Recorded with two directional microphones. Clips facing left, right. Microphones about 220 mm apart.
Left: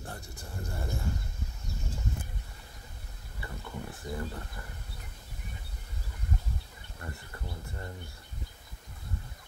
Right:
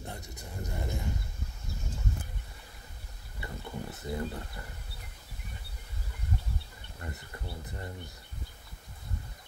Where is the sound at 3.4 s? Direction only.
20° right (ahead or behind).